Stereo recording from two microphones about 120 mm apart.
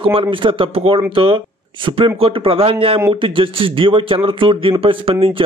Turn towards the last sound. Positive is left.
turn(degrees=-50)  # may be behind; listen again after turning